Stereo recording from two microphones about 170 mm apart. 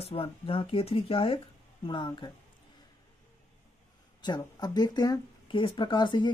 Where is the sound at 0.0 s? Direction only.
35° left (ahead or behind).